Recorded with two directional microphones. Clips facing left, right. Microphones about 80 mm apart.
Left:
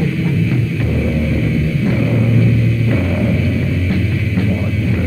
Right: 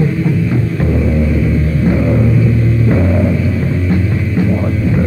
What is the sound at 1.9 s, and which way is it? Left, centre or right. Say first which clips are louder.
Music: right 5 dB; right.